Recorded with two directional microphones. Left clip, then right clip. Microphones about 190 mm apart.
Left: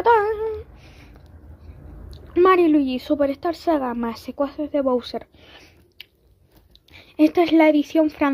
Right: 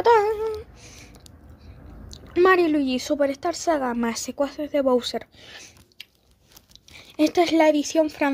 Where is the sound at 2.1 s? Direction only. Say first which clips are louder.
Left 2 dB; 5° right (ahead or behind).